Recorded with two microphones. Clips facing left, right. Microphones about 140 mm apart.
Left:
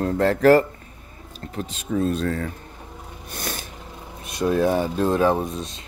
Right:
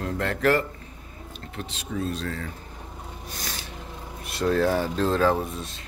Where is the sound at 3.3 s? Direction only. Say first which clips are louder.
Left 7 dB; 55° left (ahead or behind).